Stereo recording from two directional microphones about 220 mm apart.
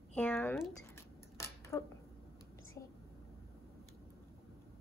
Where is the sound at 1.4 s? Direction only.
10° left (ahead or behind).